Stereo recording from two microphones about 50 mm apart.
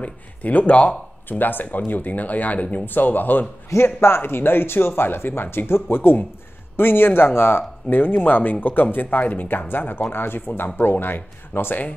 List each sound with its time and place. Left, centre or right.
0.0 s speech: left
1.4 s speech: left
3.7 s speech: left